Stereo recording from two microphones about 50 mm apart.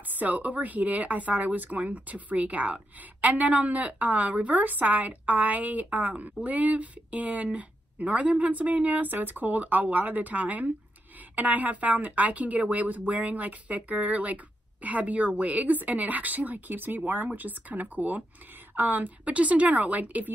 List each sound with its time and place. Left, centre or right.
0.0 s speech: right